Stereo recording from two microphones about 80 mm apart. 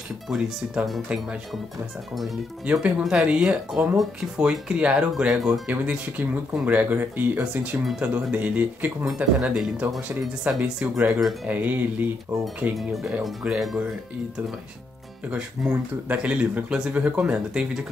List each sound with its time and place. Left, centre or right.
1.0 s speech: centre
2.6 s speech: centre
5.7 s speech: centre
9.0 s speech: centre
10.6 s speech: right
11.1 s speech: centre
11.4 s speech: right
12.7 s speech: centre
15.2 s speech: centre